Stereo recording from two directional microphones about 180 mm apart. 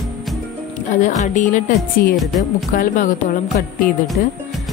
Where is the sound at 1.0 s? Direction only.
45° left (ahead or behind).